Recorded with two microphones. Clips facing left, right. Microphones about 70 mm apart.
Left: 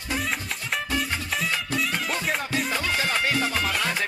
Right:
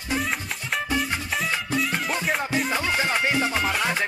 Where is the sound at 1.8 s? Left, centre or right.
Centre.